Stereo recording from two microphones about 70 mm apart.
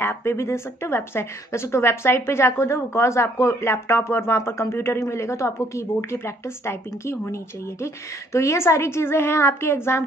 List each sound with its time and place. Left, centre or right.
0.0 s a woman's voice: left